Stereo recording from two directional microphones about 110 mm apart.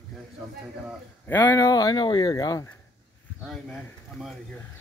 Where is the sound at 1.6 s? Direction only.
35° left (ahead or behind).